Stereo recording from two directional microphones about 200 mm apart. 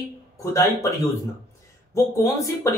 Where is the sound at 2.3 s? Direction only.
15° left (ahead or behind).